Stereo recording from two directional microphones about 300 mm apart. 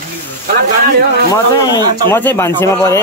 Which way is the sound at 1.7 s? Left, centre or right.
Centre.